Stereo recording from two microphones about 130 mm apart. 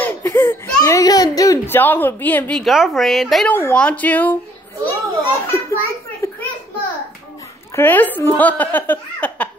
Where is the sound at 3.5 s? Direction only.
20° left (ahead or behind).